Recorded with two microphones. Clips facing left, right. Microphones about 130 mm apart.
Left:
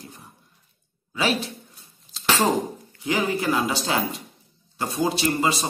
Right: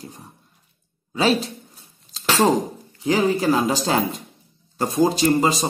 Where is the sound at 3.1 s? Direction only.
35° right (ahead or behind).